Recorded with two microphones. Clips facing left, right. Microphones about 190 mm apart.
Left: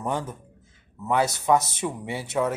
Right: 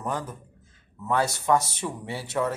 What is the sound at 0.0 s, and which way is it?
Speech, 20° left (ahead or behind).